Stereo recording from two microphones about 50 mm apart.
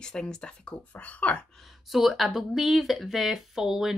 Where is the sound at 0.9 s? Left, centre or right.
Left.